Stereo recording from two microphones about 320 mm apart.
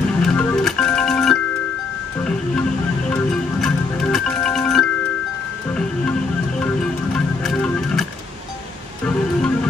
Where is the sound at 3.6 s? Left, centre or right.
Centre.